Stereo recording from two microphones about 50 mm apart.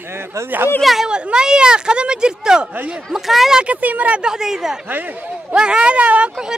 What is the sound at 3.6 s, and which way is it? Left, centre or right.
Speech, right.